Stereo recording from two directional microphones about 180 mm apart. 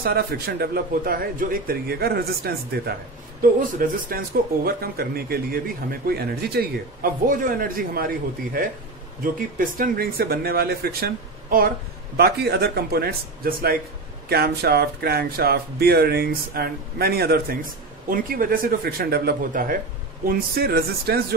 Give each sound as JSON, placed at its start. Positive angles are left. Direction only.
{"t": 0.0, "sound": "speech", "side_deg": -60}
{"t": 3.6, "sound": "a man's voice", "side_deg": -50}
{"t": 4.6, "sound": "speech", "side_deg": -60}
{"t": 12.2, "sound": "speech", "side_deg": -60}